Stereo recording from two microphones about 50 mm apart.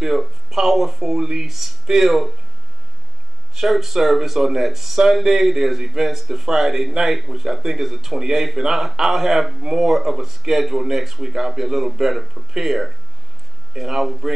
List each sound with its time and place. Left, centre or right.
0.0 s speech: centre
3.5 s speech: centre